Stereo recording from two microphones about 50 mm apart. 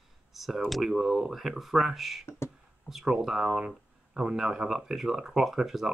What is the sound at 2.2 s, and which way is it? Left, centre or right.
Beatboxing, left.